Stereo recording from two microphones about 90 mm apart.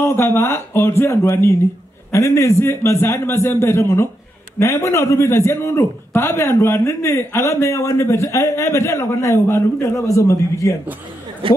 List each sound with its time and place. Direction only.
0.0 s a man's voice: 25° left (ahead or behind)
11.4 s speech: 75° right (ahead or behind)